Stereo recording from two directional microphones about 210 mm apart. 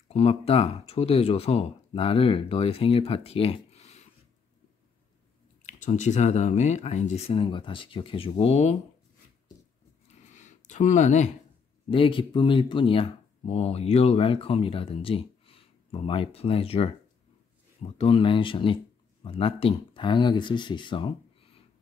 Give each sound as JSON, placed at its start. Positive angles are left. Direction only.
{"t": 0.1, "sound": "speech", "side_deg": 30}
{"t": 5.6, "sound": "speech", "side_deg": 35}
{"t": 10.0, "sound": "a sound", "side_deg": 35}
{"t": 11.9, "sound": "speech", "side_deg": 25}
{"t": 17.9, "sound": "speech", "side_deg": 25}